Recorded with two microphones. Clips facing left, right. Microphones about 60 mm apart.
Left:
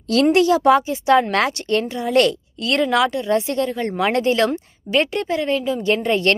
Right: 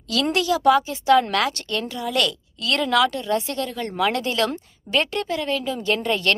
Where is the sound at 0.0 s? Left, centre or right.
Left; by 6.0 s centre.